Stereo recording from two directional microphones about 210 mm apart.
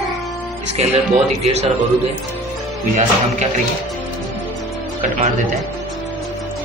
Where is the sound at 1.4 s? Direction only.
30° right (ahead or behind).